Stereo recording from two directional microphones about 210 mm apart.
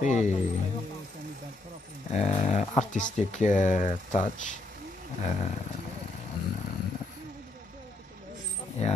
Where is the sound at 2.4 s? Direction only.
35° left (ahead or behind).